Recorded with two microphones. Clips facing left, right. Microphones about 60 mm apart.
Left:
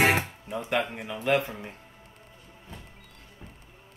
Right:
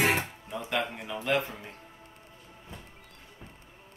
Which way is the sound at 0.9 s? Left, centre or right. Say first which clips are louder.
Left 3 dB; centre.